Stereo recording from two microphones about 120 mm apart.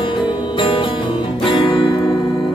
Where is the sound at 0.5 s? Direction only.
45° left (ahead or behind).